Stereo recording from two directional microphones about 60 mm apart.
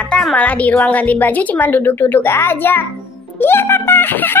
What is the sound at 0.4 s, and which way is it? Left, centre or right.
A woman's voice, left.